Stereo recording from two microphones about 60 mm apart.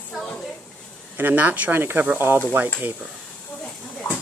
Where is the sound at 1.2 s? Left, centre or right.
Right.